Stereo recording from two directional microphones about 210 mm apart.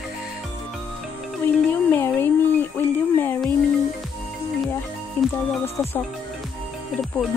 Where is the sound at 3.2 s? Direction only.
10° left (ahead or behind).